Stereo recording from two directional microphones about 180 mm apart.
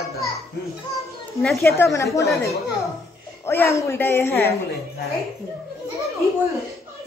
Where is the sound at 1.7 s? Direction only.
15° left (ahead or behind).